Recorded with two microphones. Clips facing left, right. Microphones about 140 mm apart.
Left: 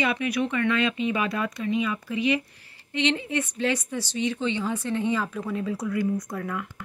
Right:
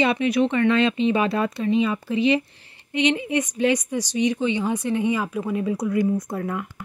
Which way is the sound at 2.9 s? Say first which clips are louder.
Right 4 dB; 15° right (ahead or behind).